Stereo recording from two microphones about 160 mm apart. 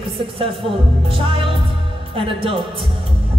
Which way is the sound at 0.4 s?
35° right (ahead or behind).